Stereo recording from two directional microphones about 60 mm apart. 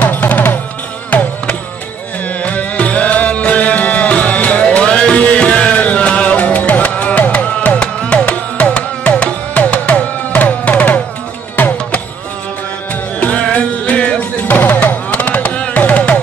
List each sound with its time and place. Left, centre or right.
0.0 s music: left
13.2 s music: left